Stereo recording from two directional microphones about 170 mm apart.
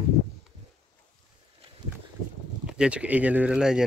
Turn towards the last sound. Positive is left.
turn(degrees=-5)  # may be behind; listen again after turning